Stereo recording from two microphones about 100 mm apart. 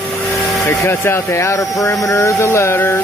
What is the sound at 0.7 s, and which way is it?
Speech, 25° left (ahead or behind).